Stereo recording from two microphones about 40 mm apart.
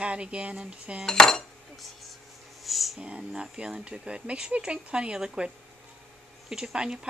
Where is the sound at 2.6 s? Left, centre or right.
Centre.